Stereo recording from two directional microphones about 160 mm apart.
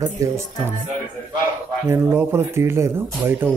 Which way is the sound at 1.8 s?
15° right (ahead or behind).